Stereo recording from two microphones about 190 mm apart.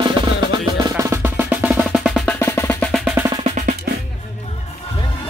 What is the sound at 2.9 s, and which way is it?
Percussion, 5° right (ahead or behind).